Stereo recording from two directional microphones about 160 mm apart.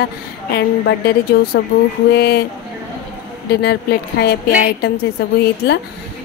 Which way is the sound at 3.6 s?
85° left.